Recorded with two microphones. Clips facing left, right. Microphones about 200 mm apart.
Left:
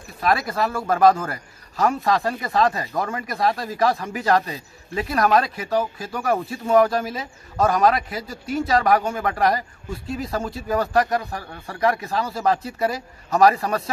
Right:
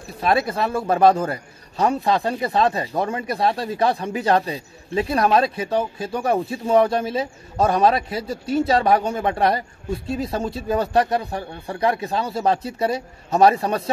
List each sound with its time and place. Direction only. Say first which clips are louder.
0.2 s a man's voice: right 1 dB; 25° right (ahead or behind)